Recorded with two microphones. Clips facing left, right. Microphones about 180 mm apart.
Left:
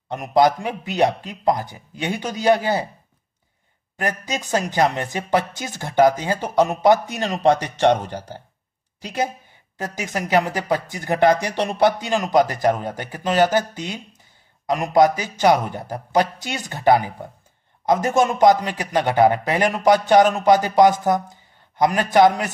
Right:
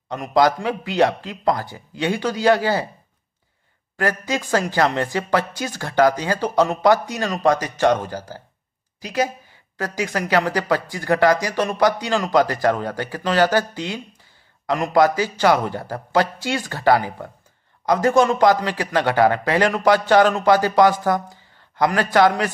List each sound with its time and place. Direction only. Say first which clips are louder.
0.1 s a man's voice: left 1 dB; 20° left (ahead or behind)
3.9 s a man's voice: right 3 dB; 20° left (ahead or behind)
9.8 s a man's voice: right 3 dB; 20° left (ahead or behind)